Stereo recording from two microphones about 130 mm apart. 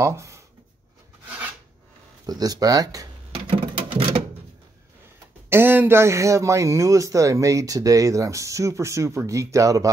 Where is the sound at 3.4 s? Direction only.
45° right (ahead or behind).